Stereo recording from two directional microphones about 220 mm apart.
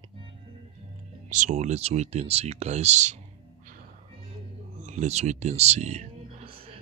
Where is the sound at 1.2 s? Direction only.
35° right (ahead or behind).